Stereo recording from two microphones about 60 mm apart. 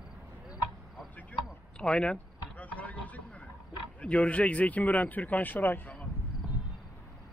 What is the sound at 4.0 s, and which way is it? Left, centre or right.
Speech, left.